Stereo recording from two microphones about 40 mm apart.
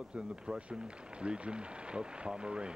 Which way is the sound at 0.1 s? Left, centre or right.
Right.